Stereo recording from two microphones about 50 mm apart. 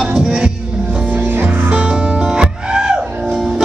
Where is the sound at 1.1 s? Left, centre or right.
Right.